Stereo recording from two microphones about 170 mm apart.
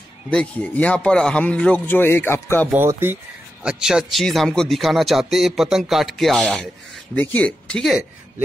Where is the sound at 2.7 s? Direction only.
15° right (ahead or behind).